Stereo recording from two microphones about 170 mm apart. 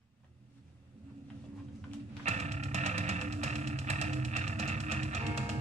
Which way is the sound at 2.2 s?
40° right (ahead or behind).